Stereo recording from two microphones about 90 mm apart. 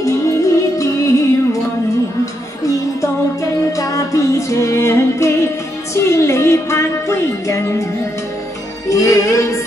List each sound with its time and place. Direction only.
0.0 s music: 35° left (ahead or behind)
3.7 s music: 40° left (ahead or behind)
8.8 s music: 35° left (ahead or behind)